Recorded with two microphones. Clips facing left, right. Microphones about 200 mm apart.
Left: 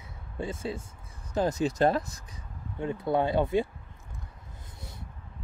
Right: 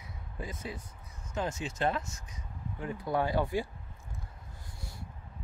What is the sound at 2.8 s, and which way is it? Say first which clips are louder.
Speech: left 5 dB; 25° left (ahead or behind).